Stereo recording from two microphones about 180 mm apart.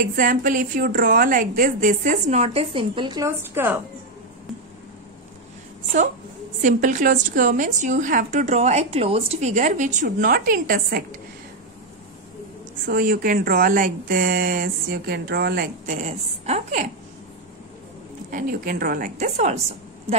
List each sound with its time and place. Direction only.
0.0 s a woman's voice: 50° right (ahead or behind); by 3.3 s 25° right (ahead or behind)
3.3 s a woman's voice: 15° right (ahead or behind)
6.6 s a woman's voice: 45° right (ahead or behind)
12.8 s a woman's voice: 55° right (ahead or behind)
16.0 s a woman's voice: 35° right (ahead or behind)
18.3 s a woman's voice: 50° right (ahead or behind)